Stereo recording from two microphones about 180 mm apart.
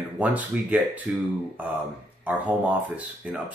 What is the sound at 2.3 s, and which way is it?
Speech, 10° right (ahead or behind).